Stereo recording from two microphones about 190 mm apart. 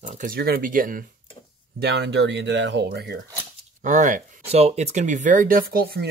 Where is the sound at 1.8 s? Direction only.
60° right (ahead or behind).